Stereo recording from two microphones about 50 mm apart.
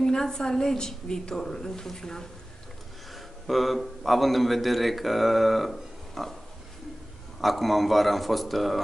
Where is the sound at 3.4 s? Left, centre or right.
Centre.